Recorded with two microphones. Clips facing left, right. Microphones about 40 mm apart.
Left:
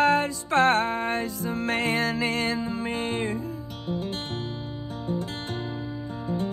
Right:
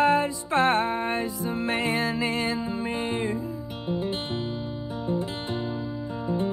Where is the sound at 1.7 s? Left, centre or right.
Left.